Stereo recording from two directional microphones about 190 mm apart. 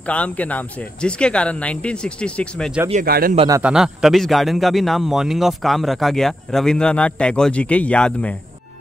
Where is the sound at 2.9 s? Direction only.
50° right (ahead or behind).